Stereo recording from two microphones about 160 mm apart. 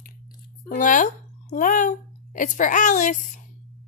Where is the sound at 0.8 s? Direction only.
50° left (ahead or behind).